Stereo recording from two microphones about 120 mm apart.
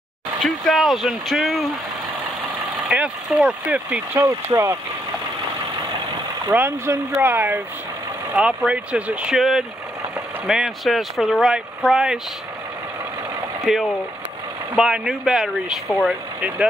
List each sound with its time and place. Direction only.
0.4 s speech: centre (ahead or behind)
2.9 s speech: 10° right (ahead or behind)
4.2 s speech: 25° right (ahead or behind)
6.5 s speech: 20° right (ahead or behind)
13.7 s speech: centre (ahead or behind)